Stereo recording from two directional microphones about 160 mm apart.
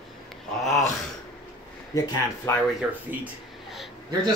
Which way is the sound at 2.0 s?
25° left (ahead or behind).